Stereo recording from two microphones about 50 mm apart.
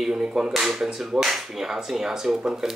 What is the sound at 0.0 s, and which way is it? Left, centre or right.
Speech, centre.